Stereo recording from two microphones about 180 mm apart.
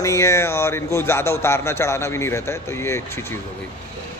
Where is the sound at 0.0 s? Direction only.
15° left (ahead or behind).